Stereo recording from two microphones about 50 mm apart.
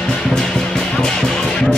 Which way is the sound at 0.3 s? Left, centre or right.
Centre.